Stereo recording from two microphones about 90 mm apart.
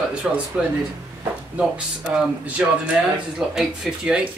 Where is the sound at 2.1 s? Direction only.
15° right (ahead or behind).